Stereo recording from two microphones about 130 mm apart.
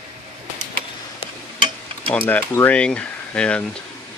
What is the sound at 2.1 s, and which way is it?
Speech, 10° left (ahead or behind).